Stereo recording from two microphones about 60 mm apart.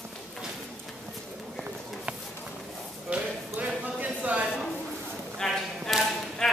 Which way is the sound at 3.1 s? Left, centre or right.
Right.